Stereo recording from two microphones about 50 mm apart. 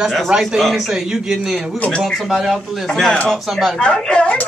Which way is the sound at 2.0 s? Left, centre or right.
Centre.